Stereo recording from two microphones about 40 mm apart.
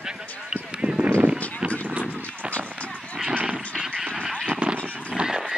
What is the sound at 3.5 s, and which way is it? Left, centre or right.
Vehicle, centre.